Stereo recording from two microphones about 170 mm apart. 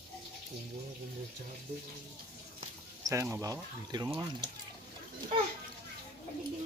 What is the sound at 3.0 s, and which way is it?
Speech, 15° right (ahead or behind).